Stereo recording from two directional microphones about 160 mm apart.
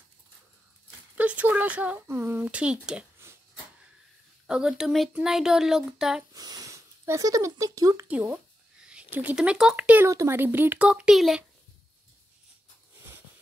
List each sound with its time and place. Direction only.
1.1 s speech: 10° right (ahead or behind)
4.5 s speech: 5° right (ahead or behind)
6.3 s speech: 25° right (ahead or behind); by 11.4 s centre (ahead or behind)